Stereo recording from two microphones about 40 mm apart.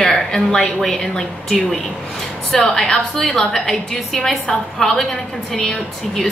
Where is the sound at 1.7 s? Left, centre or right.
Centre.